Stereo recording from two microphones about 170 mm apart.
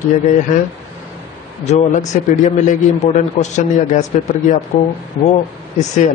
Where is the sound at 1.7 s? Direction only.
45° left (ahead or behind).